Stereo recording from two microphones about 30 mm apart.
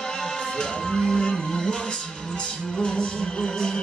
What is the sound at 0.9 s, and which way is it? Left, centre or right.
Music, centre.